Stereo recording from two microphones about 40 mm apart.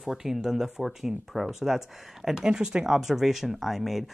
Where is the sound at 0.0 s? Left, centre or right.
Centre.